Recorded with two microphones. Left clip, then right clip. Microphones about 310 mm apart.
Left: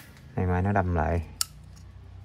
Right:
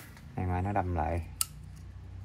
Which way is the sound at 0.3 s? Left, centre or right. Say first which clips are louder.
Left 6 dB; left.